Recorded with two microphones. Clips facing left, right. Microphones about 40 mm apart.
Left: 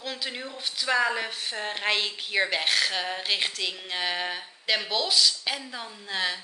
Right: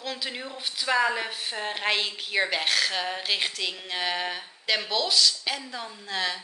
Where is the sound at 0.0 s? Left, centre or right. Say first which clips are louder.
Even; centre.